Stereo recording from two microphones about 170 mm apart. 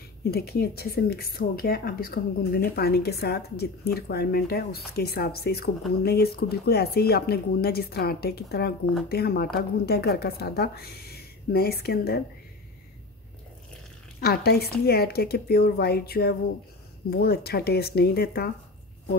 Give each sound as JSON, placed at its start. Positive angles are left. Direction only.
{"t": 0.2, "sound": "speech", "side_deg": 65}
{"t": 14.2, "sound": "speech", "side_deg": 65}